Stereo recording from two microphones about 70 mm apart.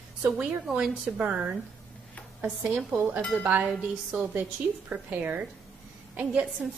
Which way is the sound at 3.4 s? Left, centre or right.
Right.